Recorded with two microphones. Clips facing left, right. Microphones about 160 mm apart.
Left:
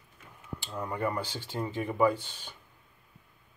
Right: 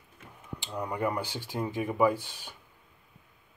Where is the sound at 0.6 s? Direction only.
15° right (ahead or behind).